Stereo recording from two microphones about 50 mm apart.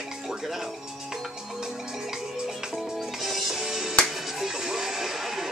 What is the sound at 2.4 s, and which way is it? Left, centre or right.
Music, centre.